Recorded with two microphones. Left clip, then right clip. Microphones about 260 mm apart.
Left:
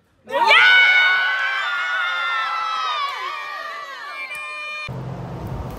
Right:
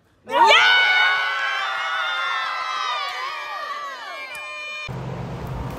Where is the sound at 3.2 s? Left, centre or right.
Right.